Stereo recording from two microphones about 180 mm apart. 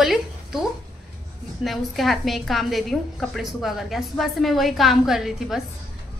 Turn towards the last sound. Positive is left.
turn(degrees=0)  # may be behind; listen again after turning